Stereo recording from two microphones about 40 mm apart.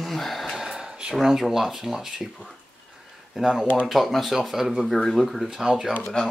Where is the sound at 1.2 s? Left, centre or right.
Centre.